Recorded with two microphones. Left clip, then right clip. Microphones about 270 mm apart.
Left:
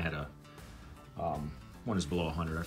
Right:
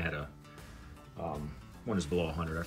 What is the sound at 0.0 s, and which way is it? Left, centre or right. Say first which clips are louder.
Music: right 1 dB; centre.